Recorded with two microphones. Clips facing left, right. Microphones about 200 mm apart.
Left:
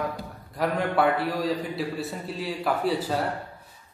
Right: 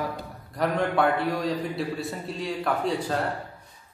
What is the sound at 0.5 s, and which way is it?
A man's voice, centre (ahead or behind).